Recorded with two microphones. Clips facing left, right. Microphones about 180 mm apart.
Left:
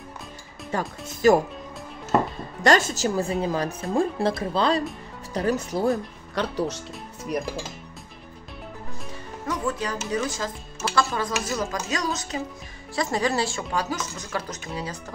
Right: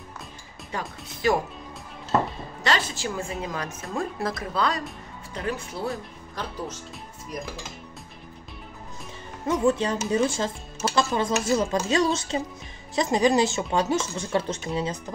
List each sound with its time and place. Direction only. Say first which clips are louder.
0.7 s speech: left 5 dB; 45° left (ahead or behind)
2.6 s a woman's voice: left 7 dB; 45° left (ahead or behind); by 4.8 s 30° left (ahead or behind)
5.3 s a woman's voice: left 7 dB; 40° left (ahead or behind)
6.3 s speech: left 7 dB; 75° left (ahead or behind)
9.5 s a woman's voice: right 6 dB; 25° right (ahead or behind)